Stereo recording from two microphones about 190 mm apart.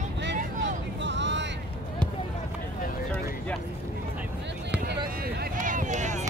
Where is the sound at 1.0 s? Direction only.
70° right (ahead or behind).